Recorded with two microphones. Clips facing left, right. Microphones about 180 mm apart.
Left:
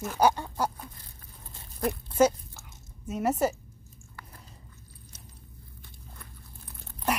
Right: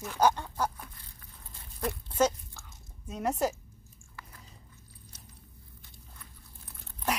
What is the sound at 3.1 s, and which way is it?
Speech, 5° left (ahead or behind).